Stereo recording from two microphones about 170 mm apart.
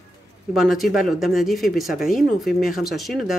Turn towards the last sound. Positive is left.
turn(degrees=0)  # may be behind; listen again after turning